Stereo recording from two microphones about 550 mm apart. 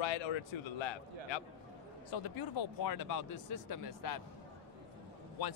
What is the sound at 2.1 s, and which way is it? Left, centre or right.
Speech, left.